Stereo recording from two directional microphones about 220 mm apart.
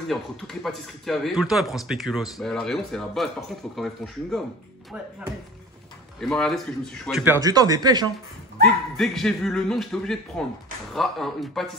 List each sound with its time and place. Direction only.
0.1 s speech: centre (ahead or behind)
6.2 s speech: centre (ahead or behind)
7.4 s speech: 15° right (ahead or behind)
8.6 s speech: centre (ahead or behind)